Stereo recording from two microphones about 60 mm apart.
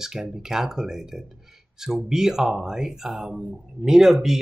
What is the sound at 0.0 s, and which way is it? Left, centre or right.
Speech, centre.